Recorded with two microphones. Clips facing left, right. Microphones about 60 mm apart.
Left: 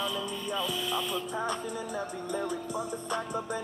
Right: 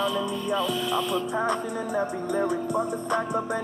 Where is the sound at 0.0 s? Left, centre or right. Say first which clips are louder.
Right 7 dB; centre.